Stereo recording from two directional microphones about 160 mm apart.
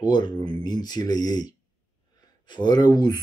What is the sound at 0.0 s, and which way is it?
Speech, 25° left (ahead or behind).